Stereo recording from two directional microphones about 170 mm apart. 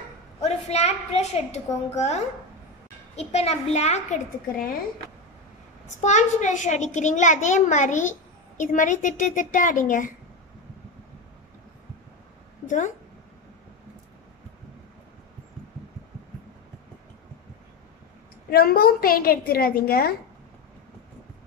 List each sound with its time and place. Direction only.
0.4 s a woman's voice: 40° left (ahead or behind)
5.9 s a child's voice: 45° left (ahead or behind)
12.6 s speech: 50° left (ahead or behind)
18.5 s a woman's voice: 65° left (ahead or behind)